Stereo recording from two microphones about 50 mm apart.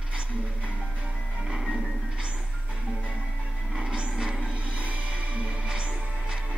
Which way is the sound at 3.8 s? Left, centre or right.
Centre.